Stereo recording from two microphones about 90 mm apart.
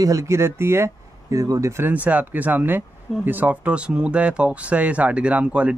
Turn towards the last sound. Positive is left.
turn(degrees=-15)  # may be behind; listen again after turning